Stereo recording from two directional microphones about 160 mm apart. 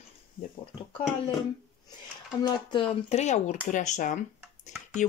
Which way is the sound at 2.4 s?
30° left (ahead or behind).